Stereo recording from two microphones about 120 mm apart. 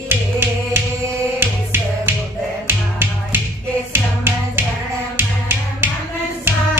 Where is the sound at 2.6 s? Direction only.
15° right (ahead or behind).